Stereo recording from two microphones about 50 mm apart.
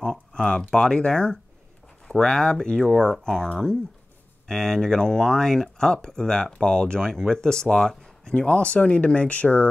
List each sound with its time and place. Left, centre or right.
0.3 s speech: centre
2.8 s speech: centre
4.5 s speech: centre
8.3 s speech: left